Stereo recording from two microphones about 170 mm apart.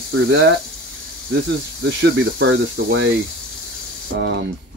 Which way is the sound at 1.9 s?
90° right.